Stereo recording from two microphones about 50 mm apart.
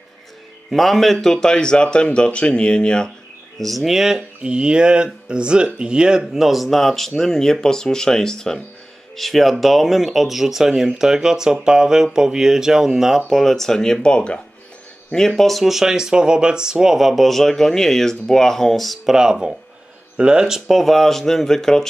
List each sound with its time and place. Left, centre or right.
0.7 s a man's voice: centre
3.5 s speech: centre
4.4 s speech: centre
6.3 s a man's voice: centre
13.4 s a man's voice: centre
15.1 s speech: centre
20.2 s speech: centre